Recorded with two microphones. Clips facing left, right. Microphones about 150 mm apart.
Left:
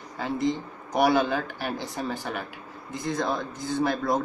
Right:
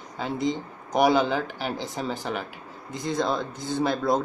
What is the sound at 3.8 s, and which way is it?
Speech, 20° right (ahead or behind).